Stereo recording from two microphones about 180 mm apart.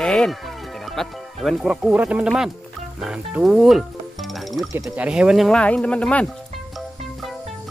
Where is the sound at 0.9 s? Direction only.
Centre (ahead or behind).